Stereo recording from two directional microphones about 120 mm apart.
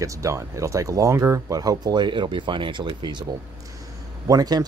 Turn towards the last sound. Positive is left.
turn(degrees=-30)  # may be behind; listen again after turning